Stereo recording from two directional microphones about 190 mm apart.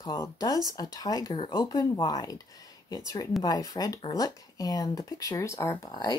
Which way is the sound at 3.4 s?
20° left (ahead or behind).